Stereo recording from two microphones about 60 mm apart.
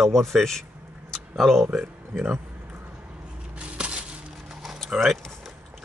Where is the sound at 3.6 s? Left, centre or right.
Right.